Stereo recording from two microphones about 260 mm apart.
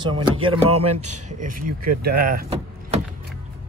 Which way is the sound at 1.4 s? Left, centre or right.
Right.